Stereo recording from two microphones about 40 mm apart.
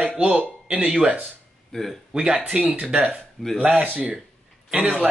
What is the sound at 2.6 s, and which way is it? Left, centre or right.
A man's voice, right.